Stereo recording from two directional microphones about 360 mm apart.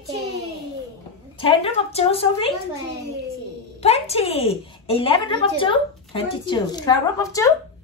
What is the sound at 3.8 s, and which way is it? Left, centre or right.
A woman's voice, centre.